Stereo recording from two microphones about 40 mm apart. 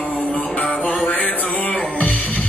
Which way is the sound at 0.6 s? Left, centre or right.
Left.